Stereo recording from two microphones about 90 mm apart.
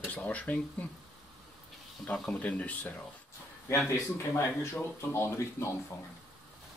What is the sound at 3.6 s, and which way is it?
Speech, 30° left (ahead or behind).